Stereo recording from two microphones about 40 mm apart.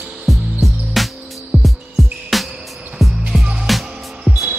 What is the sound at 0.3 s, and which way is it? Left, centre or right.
Music, centre.